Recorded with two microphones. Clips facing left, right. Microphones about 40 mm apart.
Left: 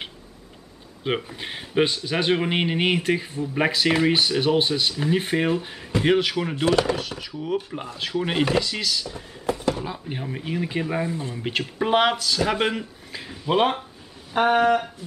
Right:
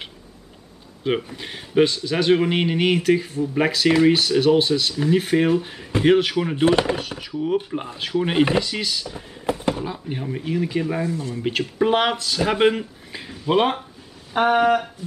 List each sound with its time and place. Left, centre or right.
1.0 s a man's voice: centre
6.5 s speech: right
7.0 s speech: centre
9.5 s a sound: right
9.8 s a man's voice: centre
11.1 s speech: left
11.3 s speech: centre